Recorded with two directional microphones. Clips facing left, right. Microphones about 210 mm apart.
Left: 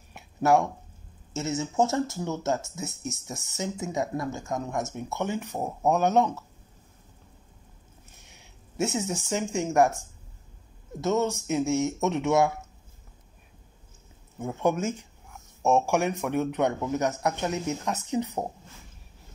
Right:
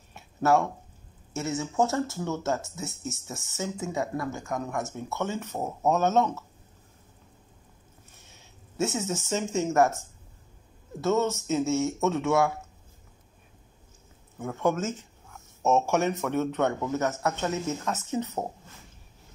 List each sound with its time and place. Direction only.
0.1 s a sound: 15° left (ahead or behind)
1.3 s a man's voice: 20° left (ahead or behind)
8.3 s a man's voice: 15° left (ahead or behind)
14.4 s a man's voice: 20° left (ahead or behind)